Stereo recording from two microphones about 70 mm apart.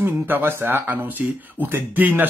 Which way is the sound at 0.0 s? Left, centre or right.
Right.